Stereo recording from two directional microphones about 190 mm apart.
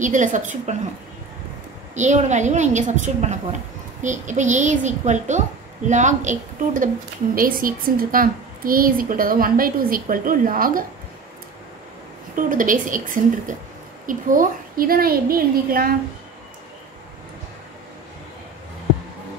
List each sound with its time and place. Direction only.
0.0 s a woman's voice: 40° right (ahead or behind)
2.0 s a woman's voice: 40° right (ahead or behind)
12.4 s a woman's voice: 45° right (ahead or behind)